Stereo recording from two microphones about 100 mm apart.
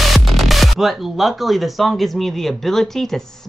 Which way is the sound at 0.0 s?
Centre (ahead or behind).